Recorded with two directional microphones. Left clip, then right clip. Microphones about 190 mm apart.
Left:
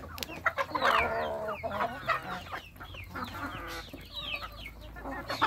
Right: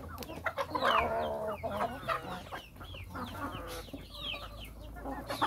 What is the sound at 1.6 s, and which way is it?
Chicken, centre (ahead or behind).